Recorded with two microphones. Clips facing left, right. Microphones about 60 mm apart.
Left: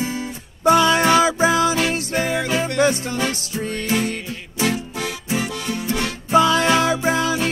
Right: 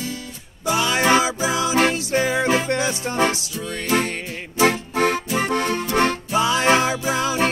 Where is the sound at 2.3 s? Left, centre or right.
Right.